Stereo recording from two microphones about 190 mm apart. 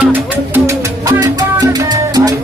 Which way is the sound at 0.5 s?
15° right (ahead or behind).